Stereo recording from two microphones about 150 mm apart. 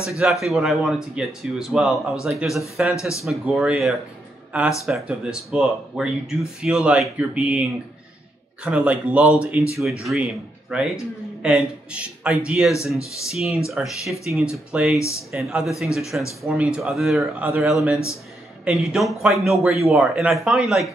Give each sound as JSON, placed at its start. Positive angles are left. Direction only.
{"t": 0.2, "sound": "a man's voice", "side_deg": 0}
{"t": 8.6, "sound": "a man's voice", "side_deg": -10}
{"t": 12.7, "sound": "speech", "side_deg": 20}
{"t": 13.3, "sound": "a man's voice", "side_deg": 0}
{"t": 15.0, "sound": "speech", "side_deg": 20}
{"t": 15.3, "sound": "a man's voice", "side_deg": -5}